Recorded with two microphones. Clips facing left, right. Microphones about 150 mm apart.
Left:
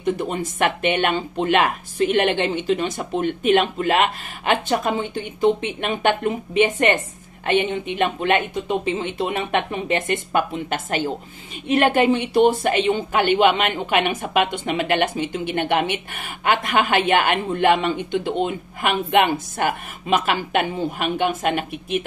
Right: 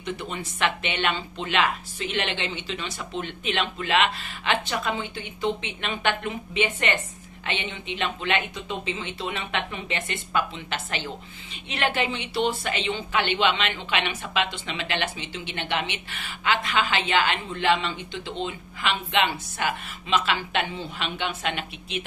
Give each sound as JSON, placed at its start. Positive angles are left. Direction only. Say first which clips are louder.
{"t": 0.0, "sound": "a woman's voice", "louder": "left 9 dB", "side_deg": 45}